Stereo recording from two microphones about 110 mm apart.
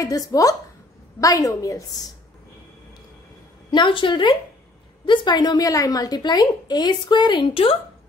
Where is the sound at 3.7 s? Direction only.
50° left (ahead or behind).